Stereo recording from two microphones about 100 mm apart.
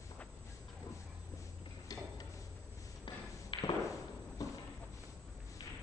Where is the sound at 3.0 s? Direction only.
55° left (ahead or behind).